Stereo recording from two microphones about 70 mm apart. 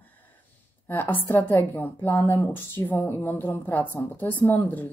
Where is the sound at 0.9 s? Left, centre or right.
Left.